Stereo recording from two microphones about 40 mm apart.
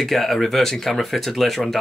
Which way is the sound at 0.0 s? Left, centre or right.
Centre.